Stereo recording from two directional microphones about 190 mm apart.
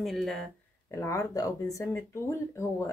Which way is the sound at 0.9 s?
15° left (ahead or behind).